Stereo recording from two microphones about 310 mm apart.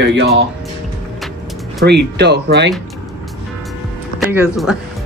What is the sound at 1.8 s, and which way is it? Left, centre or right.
Speech, right.